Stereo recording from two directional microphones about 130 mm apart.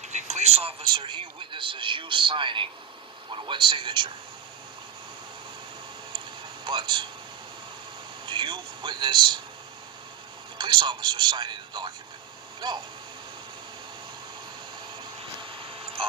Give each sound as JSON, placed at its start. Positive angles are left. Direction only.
{"t": 0.1, "sound": "a man's voice", "side_deg": -60}
{"t": 6.6, "sound": "speech", "side_deg": -35}
{"t": 8.3, "sound": "a man's voice", "side_deg": -35}
{"t": 10.6, "sound": "speech", "side_deg": -35}
{"t": 15.5, "sound": "a sound", "side_deg": -45}